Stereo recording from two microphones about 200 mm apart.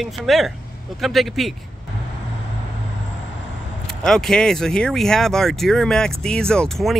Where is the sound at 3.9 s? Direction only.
Centre (ahead or behind).